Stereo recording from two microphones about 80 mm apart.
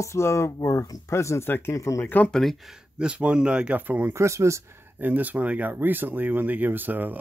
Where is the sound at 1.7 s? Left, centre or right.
Left.